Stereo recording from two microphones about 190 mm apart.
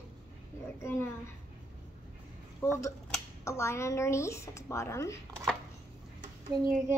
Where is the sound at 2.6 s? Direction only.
15° left (ahead or behind).